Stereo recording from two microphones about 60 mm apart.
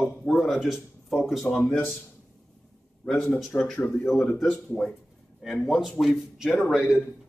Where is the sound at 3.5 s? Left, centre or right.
Left.